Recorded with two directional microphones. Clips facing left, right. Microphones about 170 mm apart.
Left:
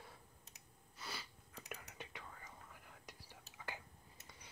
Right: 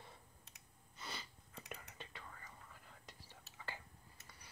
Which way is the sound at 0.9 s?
5° left (ahead or behind).